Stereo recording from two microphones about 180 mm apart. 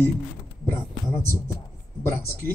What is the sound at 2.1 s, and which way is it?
Speech, 15° left (ahead or behind).